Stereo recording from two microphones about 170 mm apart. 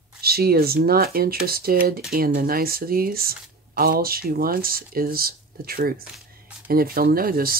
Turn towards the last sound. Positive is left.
turn(degrees=-60)  # may be behind; listen again after turning